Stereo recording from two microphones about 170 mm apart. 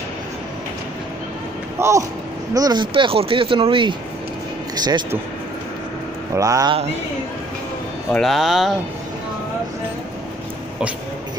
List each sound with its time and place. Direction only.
1.8 s a man's voice: 15° right (ahead or behind)
6.3 s a man's voice: 20° right (ahead or behind)
8.1 s speech: centre (ahead or behind)